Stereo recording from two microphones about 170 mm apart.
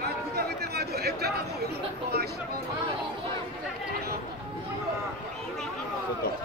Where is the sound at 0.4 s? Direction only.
70° right (ahead or behind).